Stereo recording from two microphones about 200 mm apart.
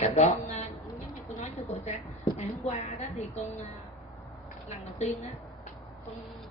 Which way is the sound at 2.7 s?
30° left (ahead or behind).